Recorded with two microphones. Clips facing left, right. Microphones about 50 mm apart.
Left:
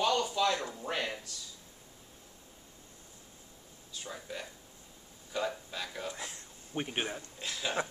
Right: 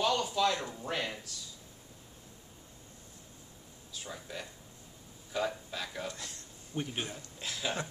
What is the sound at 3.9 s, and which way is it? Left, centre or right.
Speech, centre.